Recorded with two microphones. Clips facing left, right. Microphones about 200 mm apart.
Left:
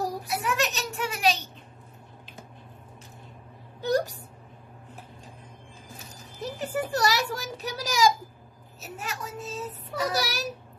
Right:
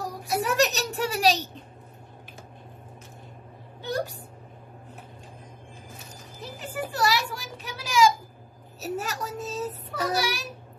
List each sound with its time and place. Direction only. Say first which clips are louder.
0.3 s speech: right 9 dB; 40° right (ahead or behind)
3.8 s a child's voice: left 5 dB; 40° left (ahead or behind)
6.4 s a child's voice: left 4 dB; 40° left (ahead or behind)
8.8 s speech: right 6 dB; 40° right (ahead or behind)
10.1 s a child's voice: right 1 dB; 40° left (ahead or behind)